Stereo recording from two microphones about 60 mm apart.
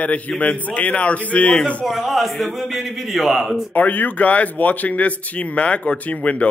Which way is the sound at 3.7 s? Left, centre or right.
Left.